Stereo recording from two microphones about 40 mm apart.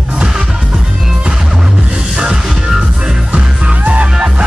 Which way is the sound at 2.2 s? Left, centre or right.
Centre.